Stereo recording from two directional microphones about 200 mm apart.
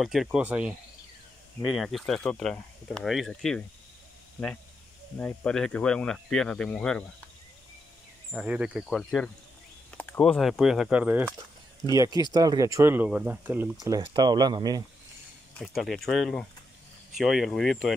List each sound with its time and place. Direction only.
0.0 s speech: centre (ahead or behind)
5.2 s speech: 5° left (ahead or behind)
8.3 s speech: 5° right (ahead or behind); by 14.8 s 20° right (ahead or behind)
15.6 s speech: centre (ahead or behind)